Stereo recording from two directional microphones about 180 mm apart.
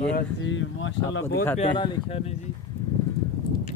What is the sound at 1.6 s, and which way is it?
Speech, 30° left (ahead or behind).